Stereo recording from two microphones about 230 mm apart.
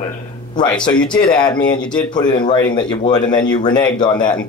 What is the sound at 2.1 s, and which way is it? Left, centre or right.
Speech, centre.